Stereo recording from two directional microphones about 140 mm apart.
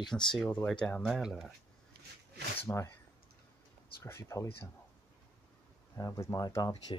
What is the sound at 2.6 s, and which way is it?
Speech, 15° left (ahead or behind).